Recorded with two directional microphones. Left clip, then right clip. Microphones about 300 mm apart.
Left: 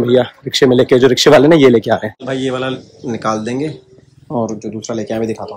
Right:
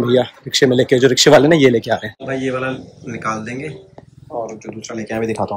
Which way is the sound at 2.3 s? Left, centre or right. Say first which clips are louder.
Left 2 dB; centre.